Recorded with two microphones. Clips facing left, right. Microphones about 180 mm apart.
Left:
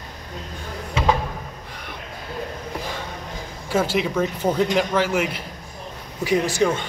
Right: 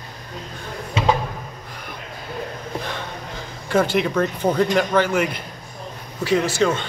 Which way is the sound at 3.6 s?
5° left (ahead or behind).